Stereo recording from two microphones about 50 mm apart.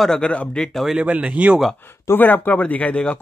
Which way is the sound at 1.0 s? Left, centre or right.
Right.